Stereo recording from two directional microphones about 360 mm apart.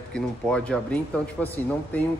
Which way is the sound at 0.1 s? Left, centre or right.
Centre.